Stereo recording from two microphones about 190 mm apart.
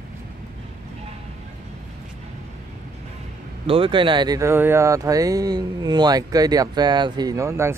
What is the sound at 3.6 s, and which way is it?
Speech, 30° right (ahead or behind).